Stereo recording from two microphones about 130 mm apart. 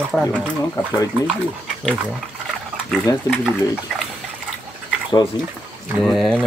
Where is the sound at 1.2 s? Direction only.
5° right (ahead or behind).